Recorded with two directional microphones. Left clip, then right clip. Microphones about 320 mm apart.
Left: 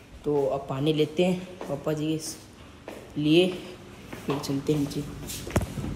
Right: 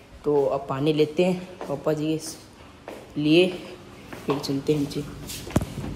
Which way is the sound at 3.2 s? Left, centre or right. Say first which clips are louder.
Right 2 dB; centre.